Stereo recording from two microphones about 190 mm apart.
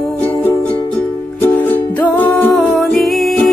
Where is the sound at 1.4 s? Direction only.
10° left (ahead or behind).